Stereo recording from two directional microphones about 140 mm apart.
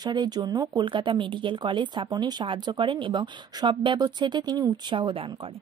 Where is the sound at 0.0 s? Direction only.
30° right (ahead or behind).